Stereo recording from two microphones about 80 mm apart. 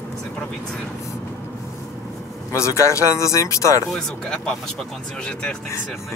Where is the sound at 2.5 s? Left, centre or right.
Left.